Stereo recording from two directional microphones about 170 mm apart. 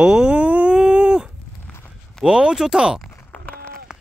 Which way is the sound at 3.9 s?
5° right (ahead or behind).